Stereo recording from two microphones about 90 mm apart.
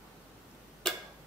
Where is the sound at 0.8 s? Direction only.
5° left (ahead or behind).